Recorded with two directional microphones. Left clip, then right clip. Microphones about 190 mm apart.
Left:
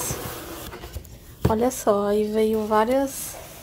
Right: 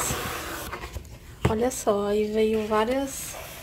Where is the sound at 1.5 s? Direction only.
15° left (ahead or behind).